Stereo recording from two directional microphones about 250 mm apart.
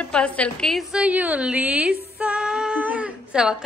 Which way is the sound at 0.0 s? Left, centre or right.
Centre.